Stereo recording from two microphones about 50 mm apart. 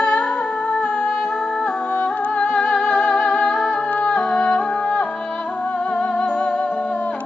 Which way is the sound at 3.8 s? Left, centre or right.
Left.